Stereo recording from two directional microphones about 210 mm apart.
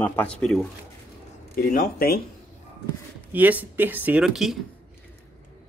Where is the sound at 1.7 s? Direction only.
45° left (ahead or behind).